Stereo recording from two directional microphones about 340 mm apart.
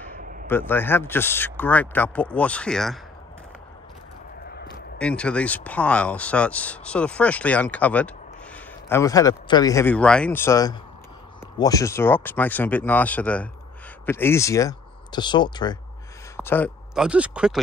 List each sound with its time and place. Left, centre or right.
0.1 s a sound: right
0.5 s speech: centre
4.9 s speech: centre